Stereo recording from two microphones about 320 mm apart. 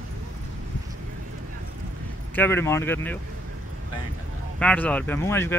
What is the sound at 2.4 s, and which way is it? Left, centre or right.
Speech, centre.